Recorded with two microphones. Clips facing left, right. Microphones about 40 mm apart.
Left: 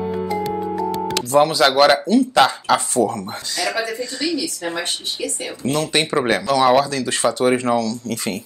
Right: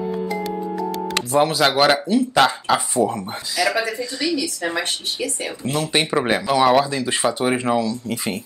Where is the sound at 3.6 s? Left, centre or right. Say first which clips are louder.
Right 2 dB; centre.